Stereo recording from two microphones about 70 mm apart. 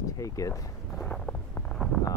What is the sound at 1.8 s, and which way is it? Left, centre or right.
Speech, centre.